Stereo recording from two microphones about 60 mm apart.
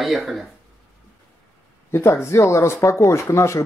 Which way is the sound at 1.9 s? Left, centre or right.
Left.